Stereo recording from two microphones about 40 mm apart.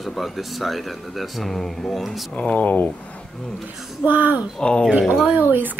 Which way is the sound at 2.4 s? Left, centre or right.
Left.